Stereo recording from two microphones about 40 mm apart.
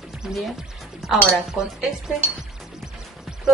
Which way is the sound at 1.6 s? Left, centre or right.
Right.